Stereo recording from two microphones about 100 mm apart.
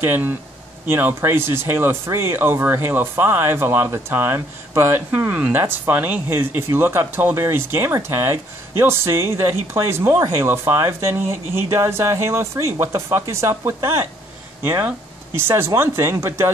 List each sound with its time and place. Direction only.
0.0 s speech: 20° right (ahead or behind)